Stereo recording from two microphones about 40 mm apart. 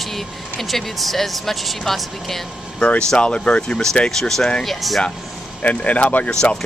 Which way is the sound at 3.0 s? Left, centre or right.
Left.